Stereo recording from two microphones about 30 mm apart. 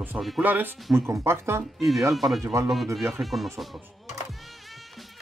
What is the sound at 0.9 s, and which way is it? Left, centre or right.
Speech, right.